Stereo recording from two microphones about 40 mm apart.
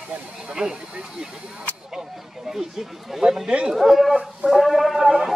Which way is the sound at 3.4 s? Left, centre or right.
Right.